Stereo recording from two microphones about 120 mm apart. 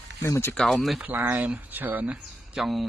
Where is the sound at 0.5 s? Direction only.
Centre (ahead or behind).